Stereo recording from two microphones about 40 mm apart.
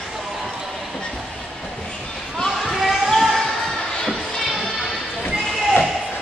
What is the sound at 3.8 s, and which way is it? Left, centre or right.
Music, left.